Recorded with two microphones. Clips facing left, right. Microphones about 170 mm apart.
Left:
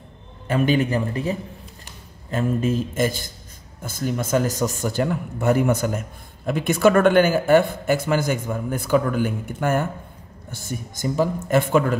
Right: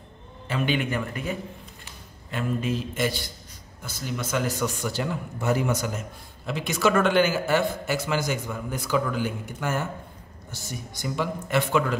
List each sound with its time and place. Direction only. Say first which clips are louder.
0.5 s speech: left 6 dB; 45° left (ahead or behind)
2.3 s a man's voice: left 6 dB; 45° left (ahead or behind)